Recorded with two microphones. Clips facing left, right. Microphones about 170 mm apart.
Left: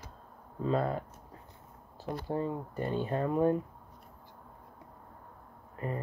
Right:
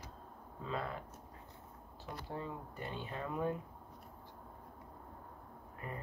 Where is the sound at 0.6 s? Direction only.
40° left (ahead or behind).